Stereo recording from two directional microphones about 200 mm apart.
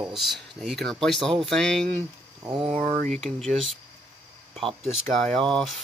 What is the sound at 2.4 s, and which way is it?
Speech, 25° right (ahead or behind).